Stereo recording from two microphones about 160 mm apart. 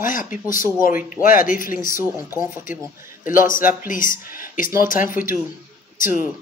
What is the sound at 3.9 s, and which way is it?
Speech, 60° left (ahead or behind).